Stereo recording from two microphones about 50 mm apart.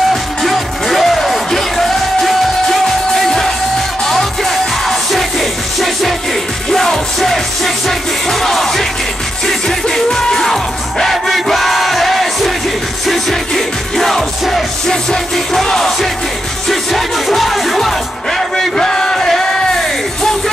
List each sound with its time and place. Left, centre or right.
0.1 s music: centre
15.3 s music: centre
18.6 s music: centre